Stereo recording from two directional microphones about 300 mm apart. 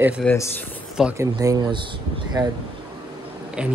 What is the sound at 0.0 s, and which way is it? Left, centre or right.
Speech, centre.